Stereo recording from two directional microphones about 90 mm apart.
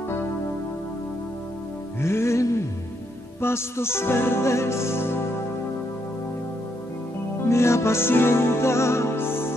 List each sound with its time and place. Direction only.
2.0 s music: 30° left (ahead or behind)
7.4 s music: 30° left (ahead or behind)